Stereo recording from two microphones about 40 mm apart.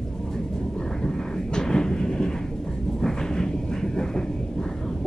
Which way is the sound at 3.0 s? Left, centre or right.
Centre.